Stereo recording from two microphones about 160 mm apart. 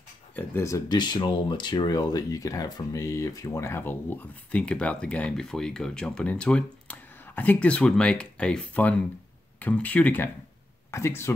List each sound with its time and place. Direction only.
0.4 s speech: 15° left (ahead or behind)